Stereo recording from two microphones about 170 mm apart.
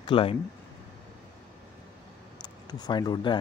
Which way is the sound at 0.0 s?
30° left (ahead or behind).